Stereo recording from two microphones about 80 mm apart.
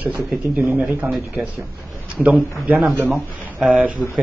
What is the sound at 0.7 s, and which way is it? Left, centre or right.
Speech, right.